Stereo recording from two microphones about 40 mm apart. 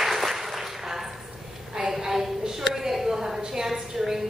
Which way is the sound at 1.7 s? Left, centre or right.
Centre.